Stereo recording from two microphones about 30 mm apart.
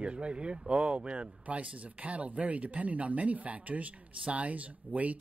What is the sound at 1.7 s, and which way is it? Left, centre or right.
Speech, right.